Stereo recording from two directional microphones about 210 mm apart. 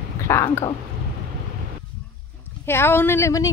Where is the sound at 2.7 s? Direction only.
10° left (ahead or behind).